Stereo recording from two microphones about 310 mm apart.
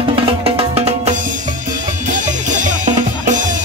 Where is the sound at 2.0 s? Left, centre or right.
Right.